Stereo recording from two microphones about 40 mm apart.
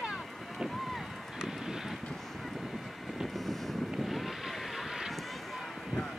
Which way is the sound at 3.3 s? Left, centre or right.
Centre.